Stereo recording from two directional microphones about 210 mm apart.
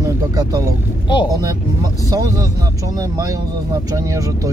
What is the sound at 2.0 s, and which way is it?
Speech, 15° right (ahead or behind).